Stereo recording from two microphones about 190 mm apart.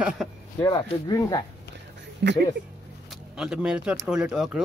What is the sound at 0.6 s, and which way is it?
Speech, 20° left (ahead or behind).